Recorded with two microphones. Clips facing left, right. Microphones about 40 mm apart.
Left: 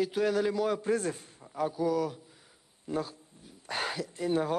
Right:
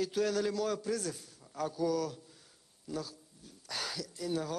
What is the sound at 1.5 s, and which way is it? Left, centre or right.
Speech, left.